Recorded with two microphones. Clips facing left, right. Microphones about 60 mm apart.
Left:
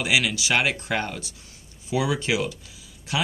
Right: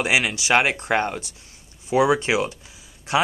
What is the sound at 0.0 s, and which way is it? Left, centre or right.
Speech, right.